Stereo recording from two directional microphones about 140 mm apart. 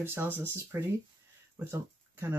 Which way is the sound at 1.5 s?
20° right (ahead or behind).